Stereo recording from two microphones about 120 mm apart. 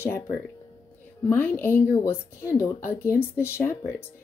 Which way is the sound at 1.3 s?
15° left (ahead or behind).